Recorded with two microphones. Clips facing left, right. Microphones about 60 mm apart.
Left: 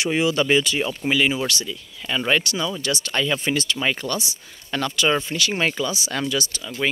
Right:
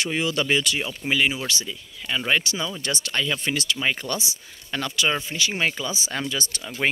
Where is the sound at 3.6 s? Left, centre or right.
Centre.